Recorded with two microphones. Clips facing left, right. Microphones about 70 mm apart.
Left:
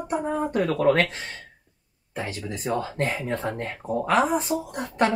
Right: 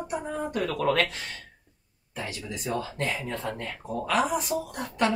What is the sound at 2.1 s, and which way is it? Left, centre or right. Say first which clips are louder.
Speech: left 4 dB; left.